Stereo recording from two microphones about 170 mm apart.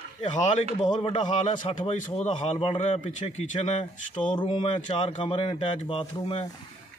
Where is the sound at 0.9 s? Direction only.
30° left (ahead or behind).